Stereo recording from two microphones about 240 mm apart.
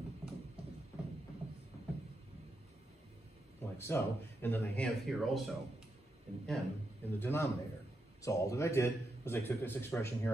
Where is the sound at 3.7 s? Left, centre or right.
Centre.